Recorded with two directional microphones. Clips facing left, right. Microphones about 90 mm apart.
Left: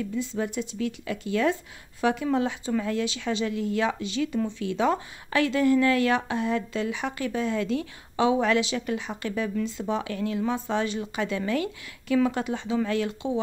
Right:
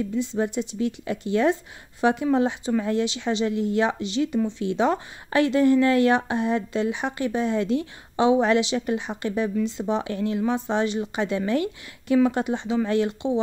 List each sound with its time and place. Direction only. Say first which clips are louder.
0.1 s speech: right 4 dB; 25° right (ahead or behind)